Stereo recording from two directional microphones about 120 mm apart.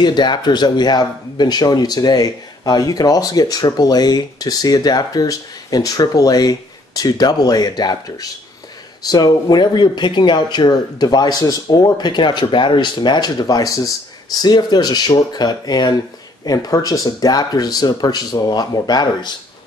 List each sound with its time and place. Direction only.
0.0 s speech: 40° left (ahead or behind)